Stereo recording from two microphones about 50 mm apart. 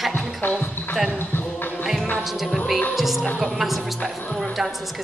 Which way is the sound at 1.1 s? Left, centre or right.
Left.